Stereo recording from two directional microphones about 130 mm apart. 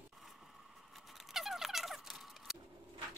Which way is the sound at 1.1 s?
Centre (ahead or behind).